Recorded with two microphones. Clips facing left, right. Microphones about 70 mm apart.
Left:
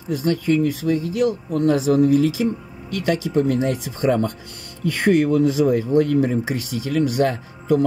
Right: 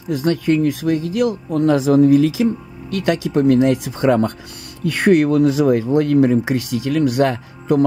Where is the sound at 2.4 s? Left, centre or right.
Right.